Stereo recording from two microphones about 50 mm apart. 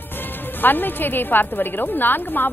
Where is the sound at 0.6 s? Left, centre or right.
Left.